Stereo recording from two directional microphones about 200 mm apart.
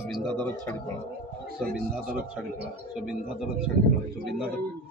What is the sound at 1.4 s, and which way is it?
Speech, 50° right (ahead or behind).